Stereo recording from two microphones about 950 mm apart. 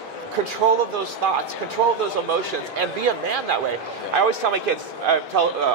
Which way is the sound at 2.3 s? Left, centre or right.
Right.